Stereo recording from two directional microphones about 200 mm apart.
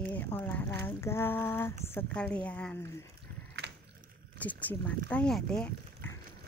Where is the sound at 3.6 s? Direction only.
55° right (ahead or behind).